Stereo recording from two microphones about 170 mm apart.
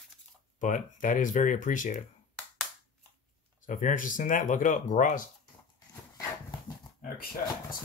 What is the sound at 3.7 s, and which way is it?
Speech, 50° left (ahead or behind).